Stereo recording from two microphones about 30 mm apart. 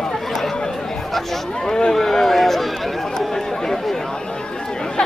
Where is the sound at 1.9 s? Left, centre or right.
Centre.